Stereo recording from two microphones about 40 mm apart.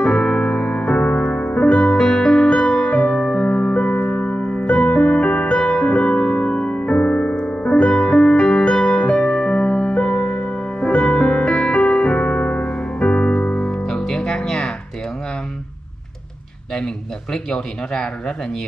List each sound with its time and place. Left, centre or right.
0.0 s music: left
4.4 s music: left
5.6 s music: left
13.8 s music: centre
16.7 s a sound: centre